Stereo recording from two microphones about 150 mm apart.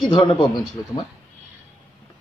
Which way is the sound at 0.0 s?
30° left (ahead or behind).